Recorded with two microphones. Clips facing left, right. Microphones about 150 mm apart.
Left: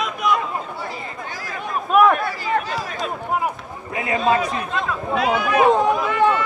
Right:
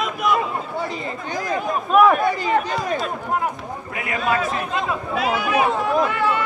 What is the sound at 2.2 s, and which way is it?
Speech, 20° right (ahead or behind).